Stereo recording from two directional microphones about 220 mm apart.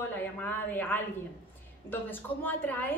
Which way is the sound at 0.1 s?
10° left (ahead or behind).